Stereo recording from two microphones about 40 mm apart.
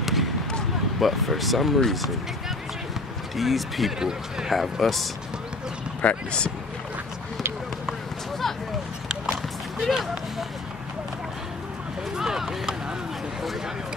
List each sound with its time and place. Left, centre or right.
0.0 s basketball bounce: centre
0.9 s speech: centre
3.3 s speech: centre
6.0 s speech: left
9.8 s run: centre
12.2 s a sound: centre